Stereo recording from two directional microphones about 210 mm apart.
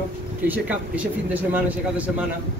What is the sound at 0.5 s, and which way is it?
Speech, 5° right (ahead or behind).